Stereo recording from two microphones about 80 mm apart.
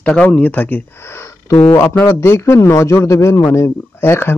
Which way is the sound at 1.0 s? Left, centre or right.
Left.